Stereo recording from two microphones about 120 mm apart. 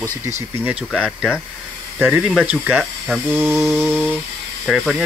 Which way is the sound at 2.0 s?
10° right (ahead or behind).